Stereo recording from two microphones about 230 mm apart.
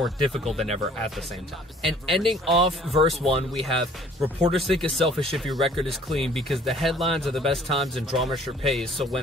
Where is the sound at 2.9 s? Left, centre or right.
Right.